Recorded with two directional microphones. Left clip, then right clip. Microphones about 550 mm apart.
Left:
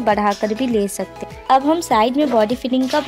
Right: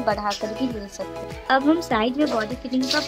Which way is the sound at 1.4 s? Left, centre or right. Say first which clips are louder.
Left 5 dB; centre.